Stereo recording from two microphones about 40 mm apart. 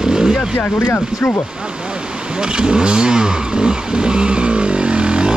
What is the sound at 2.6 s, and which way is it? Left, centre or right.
Vehicle, right.